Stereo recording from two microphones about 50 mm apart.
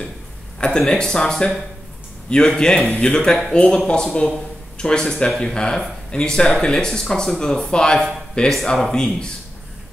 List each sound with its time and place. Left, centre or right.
0.6 s speech: centre